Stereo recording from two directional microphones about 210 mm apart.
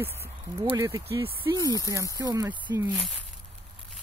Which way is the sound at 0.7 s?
15° right (ahead or behind).